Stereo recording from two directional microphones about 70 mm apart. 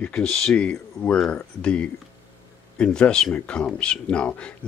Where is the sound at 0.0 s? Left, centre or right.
Centre.